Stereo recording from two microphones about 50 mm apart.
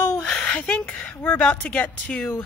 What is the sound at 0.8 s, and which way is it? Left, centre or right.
Speech, left.